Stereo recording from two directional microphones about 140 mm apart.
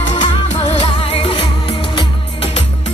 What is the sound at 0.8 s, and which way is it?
Music, 45° left (ahead or behind).